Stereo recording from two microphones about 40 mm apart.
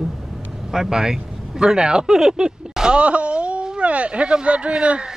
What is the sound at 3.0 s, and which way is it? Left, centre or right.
Speech, right.